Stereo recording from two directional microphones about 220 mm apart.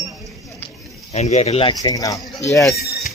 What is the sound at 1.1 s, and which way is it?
Speech, 30° left (ahead or behind).